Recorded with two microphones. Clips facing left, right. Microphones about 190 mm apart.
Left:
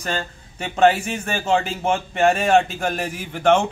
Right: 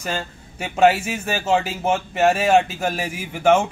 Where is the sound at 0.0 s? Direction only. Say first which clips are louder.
Left 1 dB; 5° right (ahead or behind).